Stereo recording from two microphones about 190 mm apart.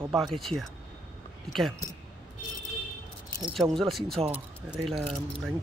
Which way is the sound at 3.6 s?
Centre (ahead or behind).